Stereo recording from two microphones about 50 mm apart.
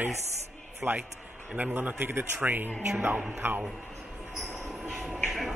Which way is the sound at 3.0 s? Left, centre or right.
Right.